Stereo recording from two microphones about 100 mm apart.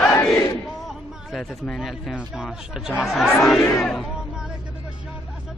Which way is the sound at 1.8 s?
Centre (ahead or behind).